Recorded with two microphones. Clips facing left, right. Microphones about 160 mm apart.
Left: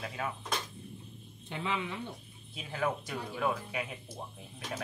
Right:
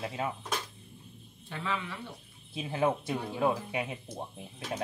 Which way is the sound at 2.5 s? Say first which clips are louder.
Right 5 dB; 25° right (ahead or behind).